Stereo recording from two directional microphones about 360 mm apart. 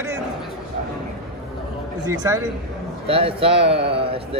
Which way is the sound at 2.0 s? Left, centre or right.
Centre.